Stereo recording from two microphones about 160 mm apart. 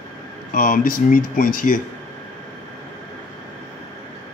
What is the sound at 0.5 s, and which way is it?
Speech, 60° left (ahead or behind).